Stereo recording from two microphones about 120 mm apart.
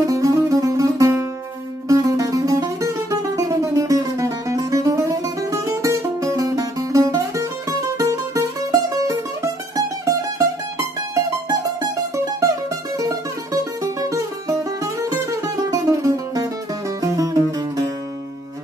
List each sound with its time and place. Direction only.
0.0 s music: 25° right (ahead or behind)
11.1 s music: 30° right (ahead or behind)
14.0 s music: 25° right (ahead or behind)